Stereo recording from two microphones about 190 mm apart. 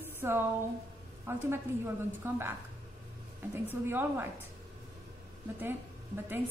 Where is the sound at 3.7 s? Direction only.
10° right (ahead or behind).